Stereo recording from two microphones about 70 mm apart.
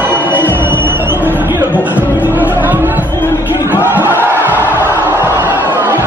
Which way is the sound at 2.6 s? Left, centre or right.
Right.